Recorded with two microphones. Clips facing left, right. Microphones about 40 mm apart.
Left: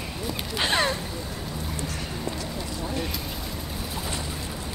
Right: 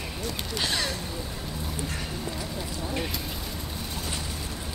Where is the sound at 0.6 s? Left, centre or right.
Left.